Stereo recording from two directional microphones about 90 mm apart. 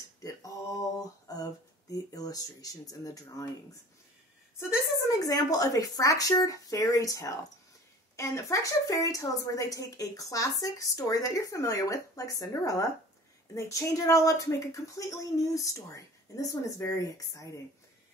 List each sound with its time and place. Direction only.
1.2 s speech: 40° left (ahead or behind)
5.0 s a woman's voice: 40° left (ahead or behind)